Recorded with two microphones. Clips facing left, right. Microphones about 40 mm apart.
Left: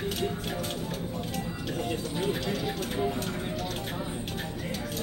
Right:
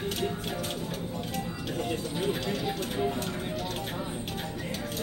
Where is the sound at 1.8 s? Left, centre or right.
Centre.